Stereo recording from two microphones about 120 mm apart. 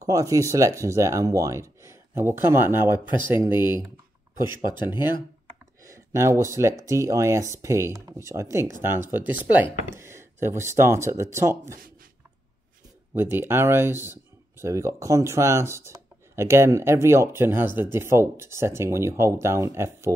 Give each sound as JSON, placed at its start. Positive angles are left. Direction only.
{"t": 0.0, "sound": "speech", "side_deg": -25}
{"t": 5.8, "sound": "speech", "side_deg": -25}
{"t": 13.1, "sound": "speech", "side_deg": -20}